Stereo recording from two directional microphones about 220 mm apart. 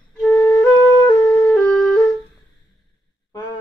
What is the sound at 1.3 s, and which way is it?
Music, 5° left (ahead or behind).